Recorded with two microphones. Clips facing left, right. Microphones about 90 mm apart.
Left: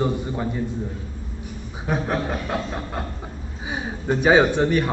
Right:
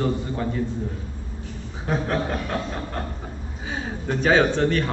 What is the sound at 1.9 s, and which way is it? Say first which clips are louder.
A man's voice: even; 10° left (ahead or behind).